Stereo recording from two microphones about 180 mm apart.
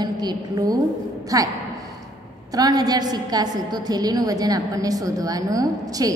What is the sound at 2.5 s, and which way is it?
A woman's voice, 20° right (ahead or behind).